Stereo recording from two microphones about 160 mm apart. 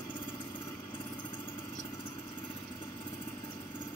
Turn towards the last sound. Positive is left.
turn(degrees=25)  # may be behind; listen again after turning